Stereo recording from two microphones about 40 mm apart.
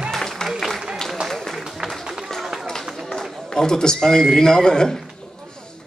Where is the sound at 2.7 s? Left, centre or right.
Centre.